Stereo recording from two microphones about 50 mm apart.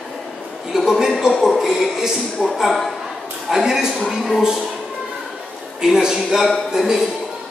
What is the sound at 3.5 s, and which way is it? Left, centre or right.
Speech, centre.